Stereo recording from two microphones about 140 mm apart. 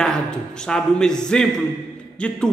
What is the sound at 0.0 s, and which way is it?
A man's voice, 5° left (ahead or behind).